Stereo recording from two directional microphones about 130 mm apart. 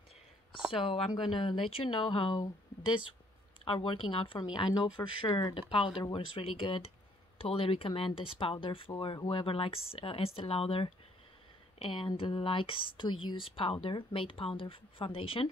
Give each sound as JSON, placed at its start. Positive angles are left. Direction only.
{"t": 0.7, "sound": "speech", "side_deg": 45}